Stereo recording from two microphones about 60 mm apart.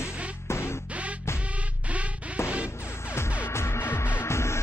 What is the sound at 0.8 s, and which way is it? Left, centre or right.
Music, right.